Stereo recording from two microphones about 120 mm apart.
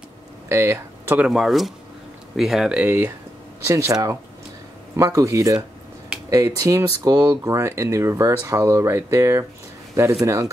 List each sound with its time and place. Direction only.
0.5 s speech: 20° right (ahead or behind)
1.2 s speech: centre (ahead or behind)
3.6 s speech: 25° right (ahead or behind)